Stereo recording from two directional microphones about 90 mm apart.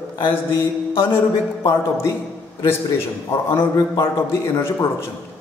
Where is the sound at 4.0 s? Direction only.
30° left (ahead or behind).